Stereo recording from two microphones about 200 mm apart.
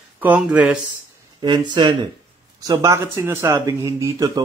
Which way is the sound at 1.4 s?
20° right (ahead or behind).